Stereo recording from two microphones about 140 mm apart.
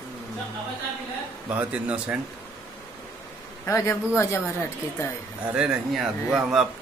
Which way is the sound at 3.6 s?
20° left (ahead or behind).